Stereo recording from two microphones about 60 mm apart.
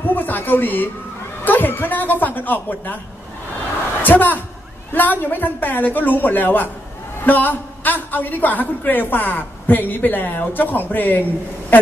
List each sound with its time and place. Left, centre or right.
0.0 s a woman's voice: left
4.0 s a woman's voice: left